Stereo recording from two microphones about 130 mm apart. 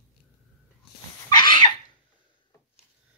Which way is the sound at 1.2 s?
35° left (ahead or behind).